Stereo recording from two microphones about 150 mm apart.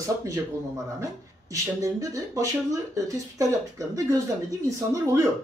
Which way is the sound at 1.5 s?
20° right (ahead or behind).